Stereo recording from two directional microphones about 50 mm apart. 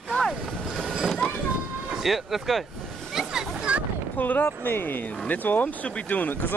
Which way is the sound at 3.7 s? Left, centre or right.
Right.